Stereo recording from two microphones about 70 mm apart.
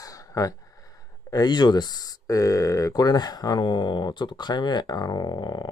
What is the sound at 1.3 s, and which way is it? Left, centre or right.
Speech, left.